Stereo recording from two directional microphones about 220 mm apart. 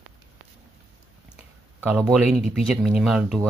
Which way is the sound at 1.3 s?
5° right (ahead or behind).